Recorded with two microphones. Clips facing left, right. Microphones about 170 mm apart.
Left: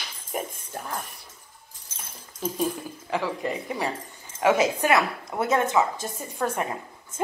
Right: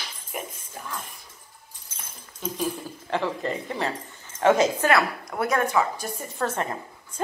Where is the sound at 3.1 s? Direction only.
5° left (ahead or behind).